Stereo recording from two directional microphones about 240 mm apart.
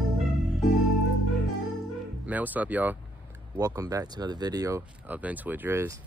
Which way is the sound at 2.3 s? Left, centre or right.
Centre.